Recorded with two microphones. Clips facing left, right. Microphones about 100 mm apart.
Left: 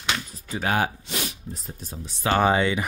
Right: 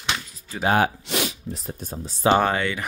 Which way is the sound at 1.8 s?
40° right (ahead or behind).